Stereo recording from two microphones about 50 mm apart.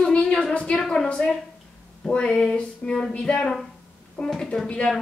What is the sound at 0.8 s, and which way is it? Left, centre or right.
Speech, centre.